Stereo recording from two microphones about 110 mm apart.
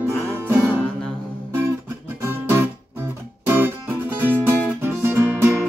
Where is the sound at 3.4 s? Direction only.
20° right (ahead or behind).